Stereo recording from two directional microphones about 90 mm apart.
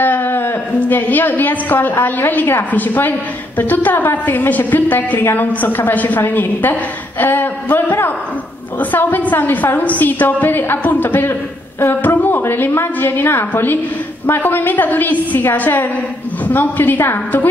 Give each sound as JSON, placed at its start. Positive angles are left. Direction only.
{"t": 0.0, "sound": "a woman's voice", "side_deg": 20}